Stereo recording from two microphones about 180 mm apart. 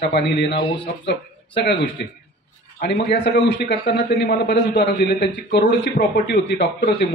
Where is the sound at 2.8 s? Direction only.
65° left (ahead or behind).